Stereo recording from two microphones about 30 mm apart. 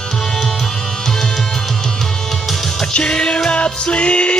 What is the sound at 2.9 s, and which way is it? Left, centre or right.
Music, left.